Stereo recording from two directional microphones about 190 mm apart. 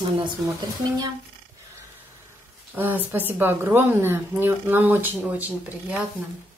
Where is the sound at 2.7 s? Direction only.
10° right (ahead or behind).